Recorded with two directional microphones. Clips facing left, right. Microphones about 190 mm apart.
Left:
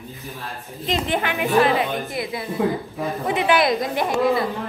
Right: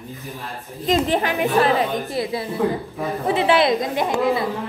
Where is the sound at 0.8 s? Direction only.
35° right (ahead or behind); by 4.5 s 20° right (ahead or behind).